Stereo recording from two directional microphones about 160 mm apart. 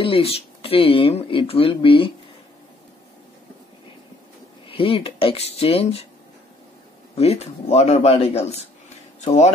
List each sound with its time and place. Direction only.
0.0 s speech: 35° left (ahead or behind)
4.6 s speech: 35° left (ahead or behind)
7.2 s speech: 40° left (ahead or behind)